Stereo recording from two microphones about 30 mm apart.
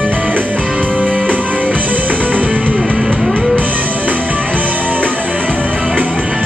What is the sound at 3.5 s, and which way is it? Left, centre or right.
Music, right.